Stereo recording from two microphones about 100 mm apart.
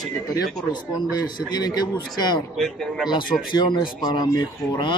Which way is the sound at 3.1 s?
50° left (ahead or behind).